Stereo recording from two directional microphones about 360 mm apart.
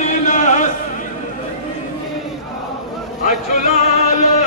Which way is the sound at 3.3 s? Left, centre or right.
Centre.